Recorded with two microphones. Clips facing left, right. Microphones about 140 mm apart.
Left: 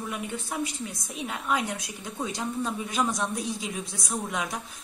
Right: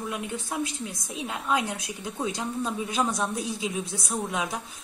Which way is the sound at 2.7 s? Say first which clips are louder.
Right 1 dB; centre (ahead or behind).